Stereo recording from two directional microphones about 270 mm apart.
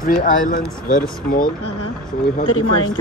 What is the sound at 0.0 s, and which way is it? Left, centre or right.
Speech, left.